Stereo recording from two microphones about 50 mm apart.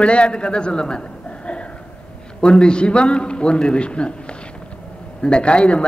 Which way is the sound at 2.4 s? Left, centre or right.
Centre.